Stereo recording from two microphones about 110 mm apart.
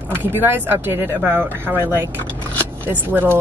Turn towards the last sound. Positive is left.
turn(degrees=-20)  # may be behind; listen again after turning